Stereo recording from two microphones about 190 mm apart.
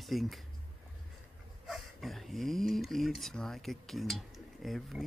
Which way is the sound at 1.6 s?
Centre (ahead or behind).